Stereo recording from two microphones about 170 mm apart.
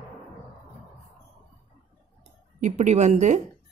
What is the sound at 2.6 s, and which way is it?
Speech, 45° right (ahead or behind).